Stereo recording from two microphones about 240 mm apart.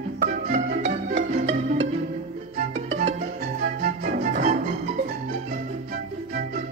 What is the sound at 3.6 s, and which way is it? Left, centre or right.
Music, right.